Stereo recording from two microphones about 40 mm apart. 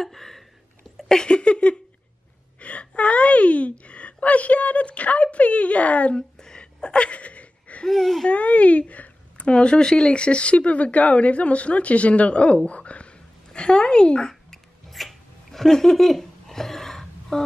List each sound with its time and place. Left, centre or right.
0.0 s a sound: centre; by 1.8 s left
2.6 s speech: left
6.1 s gasp: left
7.9 s speech: centre
8.3 s speech: left
9.4 s speech: left
14.5 s a sound: centre